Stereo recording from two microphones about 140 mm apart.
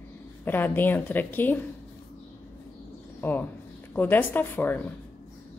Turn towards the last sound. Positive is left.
turn(degrees=15)  # may be behind; listen again after turning